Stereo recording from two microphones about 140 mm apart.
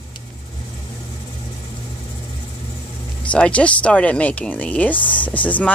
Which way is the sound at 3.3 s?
10° left (ahead or behind).